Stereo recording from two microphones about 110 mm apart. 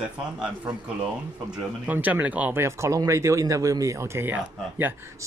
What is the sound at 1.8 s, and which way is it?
Speech, 15° right (ahead or behind).